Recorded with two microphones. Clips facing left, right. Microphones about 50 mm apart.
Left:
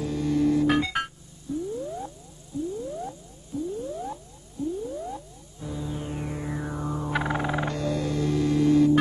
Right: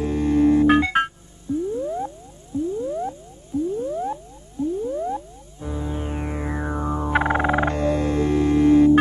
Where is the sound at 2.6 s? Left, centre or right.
Right.